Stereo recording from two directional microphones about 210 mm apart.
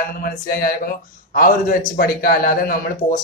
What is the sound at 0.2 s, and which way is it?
A man's voice, 45° left (ahead or behind).